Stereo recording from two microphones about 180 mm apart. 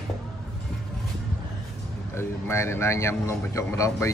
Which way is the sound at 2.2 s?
15° left (ahead or behind).